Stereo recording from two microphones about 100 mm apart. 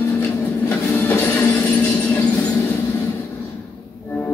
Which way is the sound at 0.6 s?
20° left (ahead or behind).